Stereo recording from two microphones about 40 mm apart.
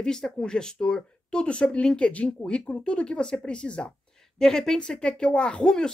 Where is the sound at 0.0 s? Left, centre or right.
Centre.